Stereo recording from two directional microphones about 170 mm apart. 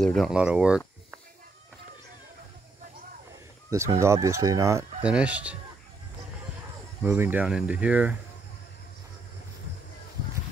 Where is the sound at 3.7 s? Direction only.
15° right (ahead or behind).